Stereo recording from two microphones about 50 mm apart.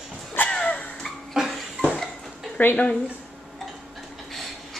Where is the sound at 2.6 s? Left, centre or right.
Left.